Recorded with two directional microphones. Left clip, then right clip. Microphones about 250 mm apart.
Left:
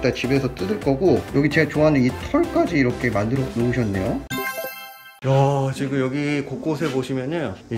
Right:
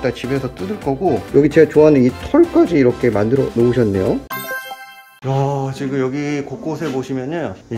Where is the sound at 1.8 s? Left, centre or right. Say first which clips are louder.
Right 6 dB; left.